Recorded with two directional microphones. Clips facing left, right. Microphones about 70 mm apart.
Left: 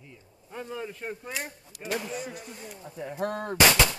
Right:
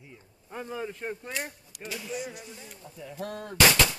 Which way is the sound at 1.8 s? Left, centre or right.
Left.